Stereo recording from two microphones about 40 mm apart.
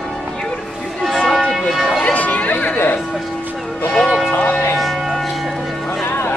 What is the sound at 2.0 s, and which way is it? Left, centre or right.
Music, left.